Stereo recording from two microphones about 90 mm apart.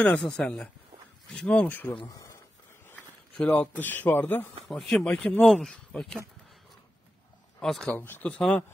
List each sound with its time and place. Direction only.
0.0 s speech: 10° left (ahead or behind)
2.0 s a sound: 45° left (ahead or behind)
2.9 s a sound: 20° left (ahead or behind)
3.8 s a man's voice: 20° left (ahead or behind)
4.6 s speech: centre (ahead or behind)
5.0 s speech: 15° left (ahead or behind)
5.5 s speech: centre (ahead or behind)
7.6 s speech: 5° left (ahead or behind)
7.9 s a man's voice: 20° left (ahead or behind)